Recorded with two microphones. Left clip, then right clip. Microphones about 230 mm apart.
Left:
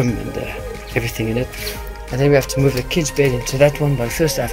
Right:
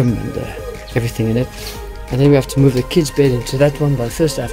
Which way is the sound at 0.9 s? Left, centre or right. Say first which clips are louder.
Right 2 dB; centre.